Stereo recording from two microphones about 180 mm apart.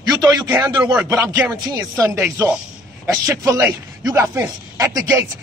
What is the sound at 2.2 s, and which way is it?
Speech, 5° right (ahead or behind).